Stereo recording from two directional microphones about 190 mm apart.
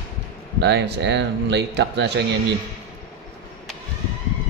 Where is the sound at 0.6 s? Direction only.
65° right (ahead or behind).